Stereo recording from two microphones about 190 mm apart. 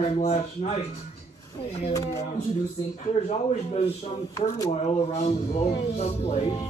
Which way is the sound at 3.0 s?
35° left (ahead or behind).